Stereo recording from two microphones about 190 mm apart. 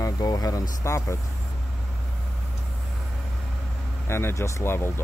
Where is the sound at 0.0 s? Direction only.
20° left (ahead or behind).